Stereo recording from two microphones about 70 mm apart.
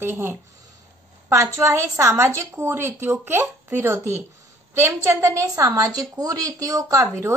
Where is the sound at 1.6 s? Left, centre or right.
Right.